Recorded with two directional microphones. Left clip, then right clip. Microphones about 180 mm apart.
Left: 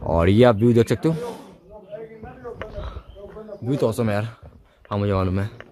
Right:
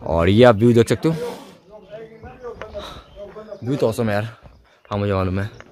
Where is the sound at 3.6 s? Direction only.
5° right (ahead or behind).